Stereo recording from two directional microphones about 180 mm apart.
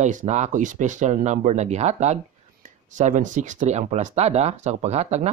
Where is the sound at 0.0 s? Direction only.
40° right (ahead or behind).